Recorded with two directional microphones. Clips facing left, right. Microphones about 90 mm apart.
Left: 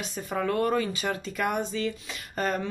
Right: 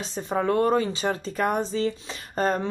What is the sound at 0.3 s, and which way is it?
Speech, 30° right (ahead or behind).